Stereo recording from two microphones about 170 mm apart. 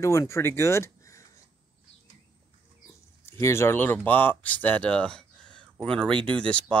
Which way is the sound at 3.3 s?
15° left (ahead or behind).